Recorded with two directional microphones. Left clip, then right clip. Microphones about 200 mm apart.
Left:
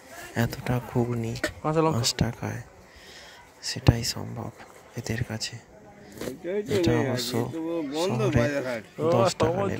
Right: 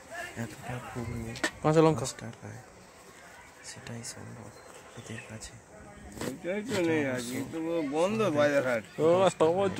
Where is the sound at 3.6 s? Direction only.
40° left (ahead or behind).